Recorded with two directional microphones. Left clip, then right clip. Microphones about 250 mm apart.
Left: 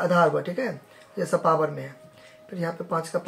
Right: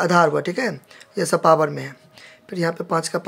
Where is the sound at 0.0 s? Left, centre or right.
Right.